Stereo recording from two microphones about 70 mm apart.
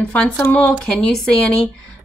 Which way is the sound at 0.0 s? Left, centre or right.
Centre.